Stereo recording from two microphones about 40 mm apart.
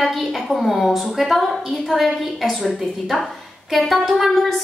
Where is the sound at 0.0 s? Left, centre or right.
Centre.